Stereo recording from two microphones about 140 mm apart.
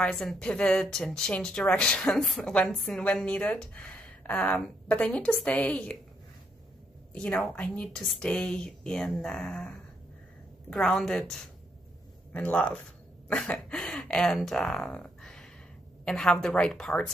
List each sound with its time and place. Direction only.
0.0 s a woman's voice: 5° left (ahead or behind)
7.2 s a woman's voice: 5° left (ahead or behind)